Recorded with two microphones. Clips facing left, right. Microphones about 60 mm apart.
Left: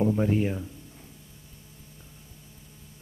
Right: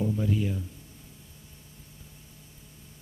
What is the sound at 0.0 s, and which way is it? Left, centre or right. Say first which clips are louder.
Speech: left 4 dB; left.